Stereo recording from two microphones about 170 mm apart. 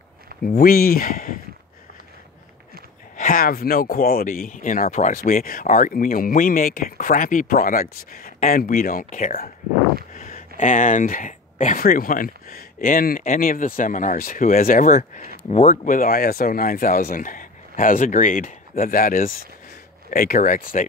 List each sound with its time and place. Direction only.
0.5 s speech: 60° left (ahead or behind)
3.2 s speech: 55° left (ahead or behind)
10.1 s a sound: 55° left (ahead or behind)
10.6 s speech: 50° left (ahead or behind)